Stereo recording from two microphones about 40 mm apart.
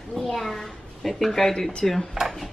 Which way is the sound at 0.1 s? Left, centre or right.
Centre.